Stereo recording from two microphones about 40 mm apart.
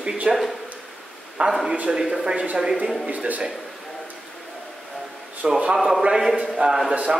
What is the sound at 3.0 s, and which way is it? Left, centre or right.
Speech, right.